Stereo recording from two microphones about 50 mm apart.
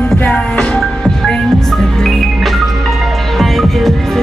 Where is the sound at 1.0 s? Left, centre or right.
Centre.